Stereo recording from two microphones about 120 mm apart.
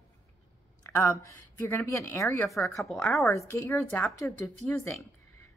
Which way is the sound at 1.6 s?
20° left (ahead or behind).